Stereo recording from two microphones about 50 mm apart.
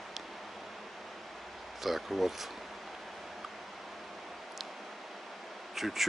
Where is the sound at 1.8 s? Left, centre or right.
Centre.